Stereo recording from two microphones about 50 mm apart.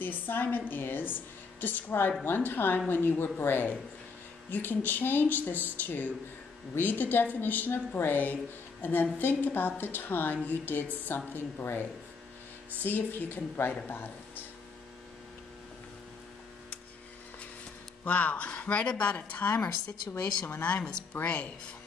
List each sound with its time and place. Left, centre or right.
0.0 s a woman's voice: left
12.8 s speech: left
18.0 s speech: left
19.6 s a woman's voice: left
20.6 s speech: left